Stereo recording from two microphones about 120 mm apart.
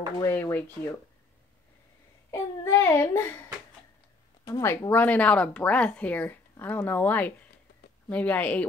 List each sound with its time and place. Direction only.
0.2 s speech: 20° left (ahead or behind)
2.3 s child singing: 25° left (ahead or behind)
4.5 s speech: 25° left (ahead or behind)